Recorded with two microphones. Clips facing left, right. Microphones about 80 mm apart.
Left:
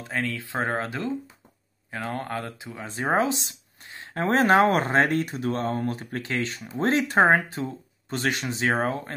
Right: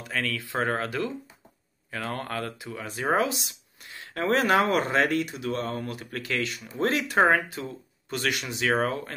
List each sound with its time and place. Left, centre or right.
0.0 s speech: left